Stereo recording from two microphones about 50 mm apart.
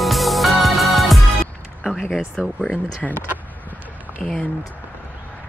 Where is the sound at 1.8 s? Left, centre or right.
Centre.